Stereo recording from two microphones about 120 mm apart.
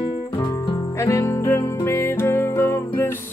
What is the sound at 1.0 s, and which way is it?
Music, 25° left (ahead or behind).